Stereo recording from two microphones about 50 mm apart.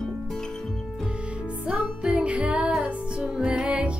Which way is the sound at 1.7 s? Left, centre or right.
Centre.